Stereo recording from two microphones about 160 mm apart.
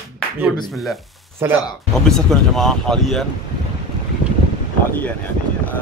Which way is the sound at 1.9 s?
5° left (ahead or behind).